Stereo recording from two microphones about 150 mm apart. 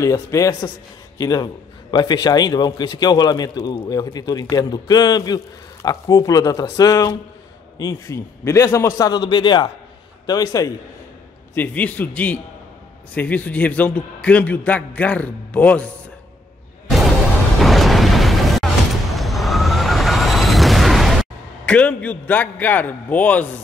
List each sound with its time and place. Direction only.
0.0 s a man's voice: 20° left (ahead or behind)
11.5 s a man's voice: 10° left (ahead or behind)
17.6 s music: centre (ahead or behind)
19.1 s a sound: centre (ahead or behind)